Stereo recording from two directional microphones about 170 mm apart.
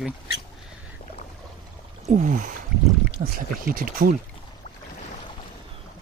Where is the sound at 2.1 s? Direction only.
45° right (ahead or behind).